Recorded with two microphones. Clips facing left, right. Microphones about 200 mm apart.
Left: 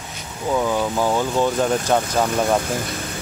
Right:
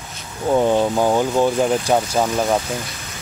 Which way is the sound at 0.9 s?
15° right (ahead or behind).